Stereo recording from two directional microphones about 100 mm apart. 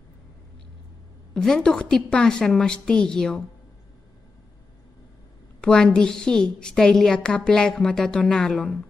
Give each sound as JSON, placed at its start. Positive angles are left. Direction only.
{"t": 1.3, "sound": "a woman's voice", "side_deg": 5}
{"t": 5.6, "sound": "a woman's voice", "side_deg": 5}